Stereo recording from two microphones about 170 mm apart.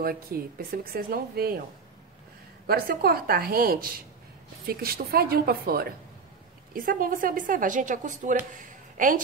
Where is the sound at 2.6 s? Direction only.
65° right (ahead or behind).